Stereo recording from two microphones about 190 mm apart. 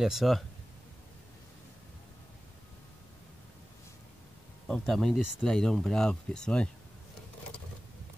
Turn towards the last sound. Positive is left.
turn(degrees=5)  # may be behind; listen again after turning